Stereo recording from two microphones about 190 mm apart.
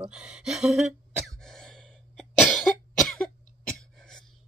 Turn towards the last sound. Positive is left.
turn(degrees=5)  # may be behind; listen again after turning